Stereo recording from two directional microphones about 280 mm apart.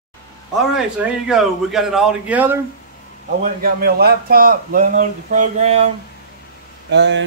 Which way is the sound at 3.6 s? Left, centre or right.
Right.